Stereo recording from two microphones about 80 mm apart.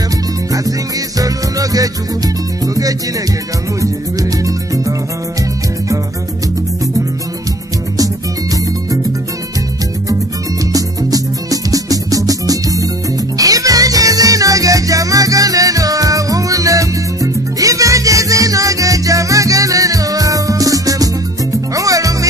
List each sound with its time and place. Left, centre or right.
1.2 s music: right
10.7 s music: right